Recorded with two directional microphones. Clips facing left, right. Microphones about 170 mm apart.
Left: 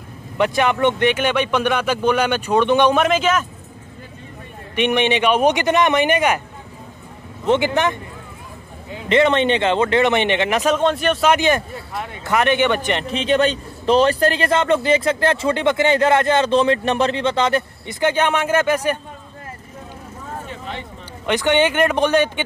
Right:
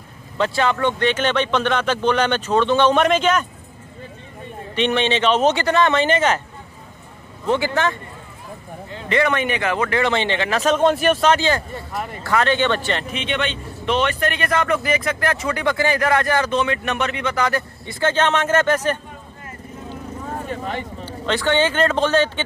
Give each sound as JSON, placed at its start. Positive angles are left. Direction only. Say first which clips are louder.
{"t": 0.4, "sound": "speech", "louder": "left 2 dB", "side_deg": 15}
{"t": 4.7, "sound": "speech", "louder": "left 2 dB", "side_deg": 15}
{"t": 7.4, "sound": "a man's voice", "louder": "left 3 dB", "side_deg": 20}
{"t": 10.8, "sound": "speech", "louder": "right 2 dB", "side_deg": -5}
{"t": 11.2, "sound": "speech", "louder": "left 4 dB", "side_deg": 15}
{"t": 11.9, "sound": "speech", "louder": "right 1 dB", "side_deg": 0}
{"t": 12.2, "sound": "speech", "louder": "left 2 dB", "side_deg": 20}
{"t": 13.0, "sound": "a man's voice", "louder": "left 7 dB", "side_deg": 35}
{"t": 20.4, "sound": "a sound", "louder": "right 4 dB", "side_deg": -45}
{"t": 21.0, "sound": "speech", "louder": "left 3 dB", "side_deg": 15}